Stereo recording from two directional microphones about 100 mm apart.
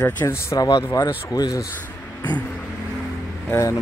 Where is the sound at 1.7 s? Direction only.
15° left (ahead or behind).